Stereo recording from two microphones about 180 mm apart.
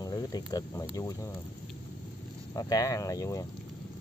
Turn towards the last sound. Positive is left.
turn(degrees=20)  # may be behind; listen again after turning